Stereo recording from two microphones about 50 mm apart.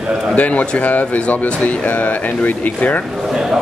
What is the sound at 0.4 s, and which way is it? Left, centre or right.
Speech, left.